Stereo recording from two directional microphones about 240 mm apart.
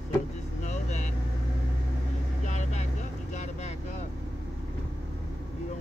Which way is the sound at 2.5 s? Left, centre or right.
Left.